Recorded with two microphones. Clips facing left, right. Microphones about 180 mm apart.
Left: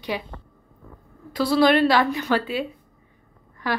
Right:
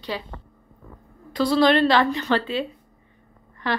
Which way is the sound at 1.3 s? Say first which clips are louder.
Even; 10° left (ahead or behind).